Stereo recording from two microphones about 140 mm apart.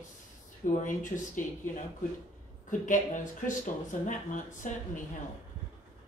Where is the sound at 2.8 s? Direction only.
65° left (ahead or behind).